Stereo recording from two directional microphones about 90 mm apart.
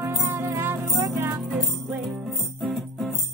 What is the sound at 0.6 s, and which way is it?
Music, 25° right (ahead or behind).